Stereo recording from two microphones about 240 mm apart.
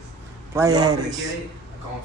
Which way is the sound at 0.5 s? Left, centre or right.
Centre.